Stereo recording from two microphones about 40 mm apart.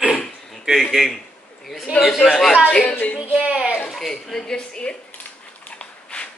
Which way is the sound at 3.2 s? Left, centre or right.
Right.